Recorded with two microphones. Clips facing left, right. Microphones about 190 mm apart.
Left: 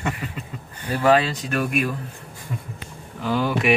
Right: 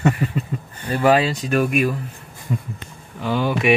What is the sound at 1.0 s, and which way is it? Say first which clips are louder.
Speech: right 2 dB; 10° right (ahead or behind).